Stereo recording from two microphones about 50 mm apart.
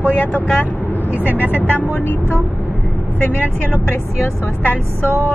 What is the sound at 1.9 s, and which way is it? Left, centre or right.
Speech, left.